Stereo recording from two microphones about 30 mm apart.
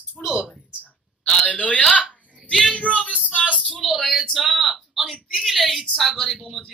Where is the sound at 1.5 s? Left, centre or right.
Left.